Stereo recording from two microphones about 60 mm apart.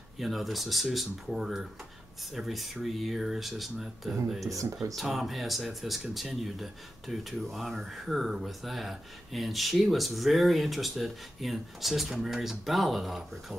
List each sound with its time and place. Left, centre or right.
0.2 s speech: centre
4.5 s speech: right
4.9 s speech: centre